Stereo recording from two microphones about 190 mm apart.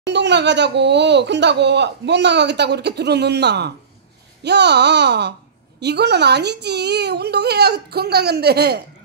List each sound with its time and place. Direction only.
0.0 s speech: 65° right (ahead or behind)